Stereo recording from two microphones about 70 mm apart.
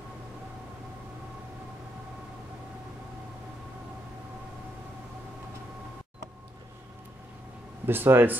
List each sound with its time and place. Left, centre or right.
7.8 s speech: right